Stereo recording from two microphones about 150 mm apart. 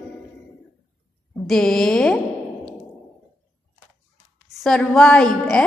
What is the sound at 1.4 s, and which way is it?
Speech, 5° left (ahead or behind).